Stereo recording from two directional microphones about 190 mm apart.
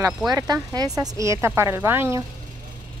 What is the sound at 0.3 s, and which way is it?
Speech, 20° right (ahead or behind).